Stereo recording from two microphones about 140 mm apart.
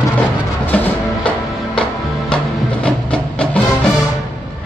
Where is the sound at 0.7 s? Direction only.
5° left (ahead or behind).